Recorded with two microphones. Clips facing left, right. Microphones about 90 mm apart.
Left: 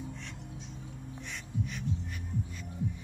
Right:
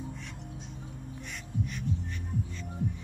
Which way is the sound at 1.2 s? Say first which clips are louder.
Right 1 dB; centre (ahead or behind).